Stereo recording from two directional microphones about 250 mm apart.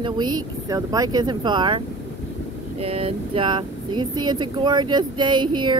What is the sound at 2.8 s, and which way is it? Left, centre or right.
Speech, right.